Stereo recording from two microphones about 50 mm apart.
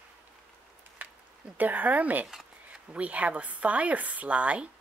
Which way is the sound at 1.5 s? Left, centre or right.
Right.